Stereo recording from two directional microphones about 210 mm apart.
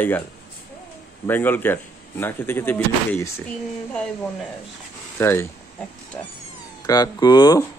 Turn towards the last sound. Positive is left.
turn(degrees=20)  # may be behind; listen again after turning